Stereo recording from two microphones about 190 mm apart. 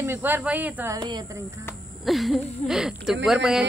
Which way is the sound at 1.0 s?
25° right (ahead or behind).